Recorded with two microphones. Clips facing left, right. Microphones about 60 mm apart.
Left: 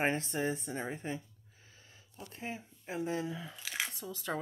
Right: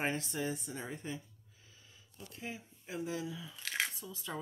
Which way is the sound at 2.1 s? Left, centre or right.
Left.